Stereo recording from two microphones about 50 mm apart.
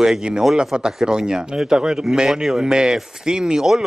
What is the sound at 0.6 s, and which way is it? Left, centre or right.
A man's voice, centre.